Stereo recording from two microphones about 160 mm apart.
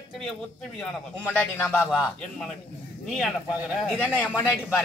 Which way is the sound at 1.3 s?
10° left (ahead or behind).